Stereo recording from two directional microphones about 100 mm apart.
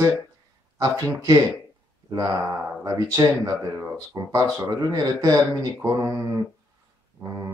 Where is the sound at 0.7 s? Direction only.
35° right (ahead or behind).